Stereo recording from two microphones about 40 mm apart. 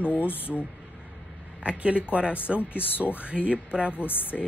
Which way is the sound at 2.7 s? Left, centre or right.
Left.